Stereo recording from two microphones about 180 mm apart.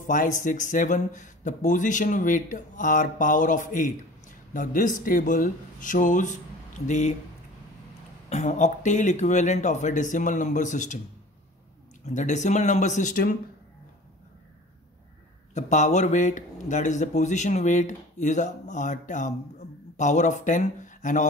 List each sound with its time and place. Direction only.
0.0 s speech: 45° left (ahead or behind)
8.3 s speech: 40° left (ahead or behind)
12.1 s speech: 40° left (ahead or behind)
15.5 s speech: 40° left (ahead or behind)